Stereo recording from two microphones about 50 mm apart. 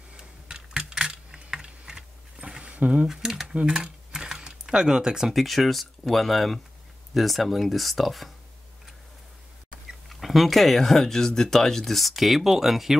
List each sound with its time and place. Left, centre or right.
0.2 s typing: centre
3.1 s speech: centre
3.5 s typing: centre
5.4 s speech: centre
9.8 s speech: centre